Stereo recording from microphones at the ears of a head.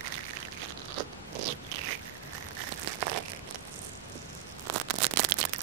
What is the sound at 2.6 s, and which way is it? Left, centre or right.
Crumpling, right.